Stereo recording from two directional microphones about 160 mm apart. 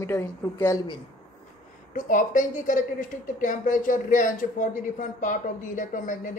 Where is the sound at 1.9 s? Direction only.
55° left (ahead or behind).